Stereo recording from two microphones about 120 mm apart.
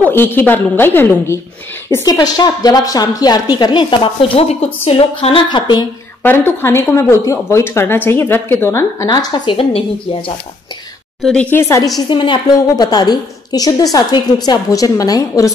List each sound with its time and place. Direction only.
0.0 s a woman's voice: 20° left (ahead or behind)
2.0 s a woman's voice: 30° left (ahead or behind); by 4.6 s 50° left (ahead or behind)
4.8 s a sound: 55° left (ahead or behind)
5.5 s a woman's voice: 40° left (ahead or behind)
6.2 s speech: 20° left (ahead or behind)
9.0 s a woman's voice: 35° left (ahead or behind)
9.6 s speech: 50° left (ahead or behind)
11.5 s speech: 20° left (ahead or behind)
12.1 s a woman's voice: 40° left (ahead or behind)